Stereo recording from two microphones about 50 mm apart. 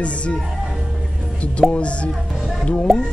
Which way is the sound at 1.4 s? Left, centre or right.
Left.